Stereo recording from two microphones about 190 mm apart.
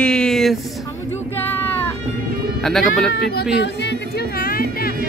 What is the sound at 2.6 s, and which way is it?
Speech, centre (ahead or behind).